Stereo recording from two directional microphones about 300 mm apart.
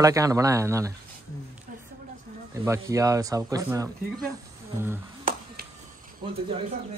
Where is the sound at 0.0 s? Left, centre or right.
Centre.